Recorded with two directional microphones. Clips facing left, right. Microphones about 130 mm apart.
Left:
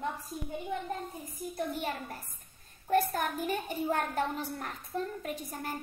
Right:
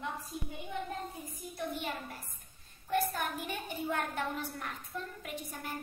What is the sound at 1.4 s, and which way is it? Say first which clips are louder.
A woman's voice: left 4 dB; 40° left (ahead or behind).